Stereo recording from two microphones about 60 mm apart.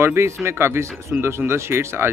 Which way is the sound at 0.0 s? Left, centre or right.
Right.